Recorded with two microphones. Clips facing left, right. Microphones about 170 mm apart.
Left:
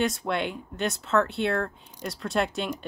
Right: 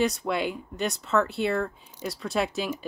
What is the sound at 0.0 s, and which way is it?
Speech, centre (ahead or behind).